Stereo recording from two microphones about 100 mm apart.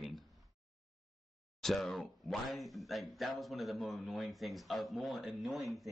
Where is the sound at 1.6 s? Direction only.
5° left (ahead or behind).